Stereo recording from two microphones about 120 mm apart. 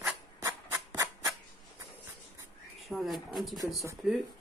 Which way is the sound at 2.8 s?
Centre (ahead or behind).